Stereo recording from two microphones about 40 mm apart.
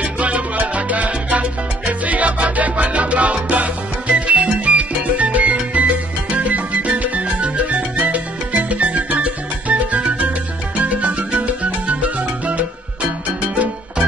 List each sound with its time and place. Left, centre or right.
0.0 s salsa music: right
4.6 s music: right